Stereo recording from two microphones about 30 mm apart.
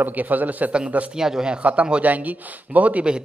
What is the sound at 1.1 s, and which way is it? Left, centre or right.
Speech, centre.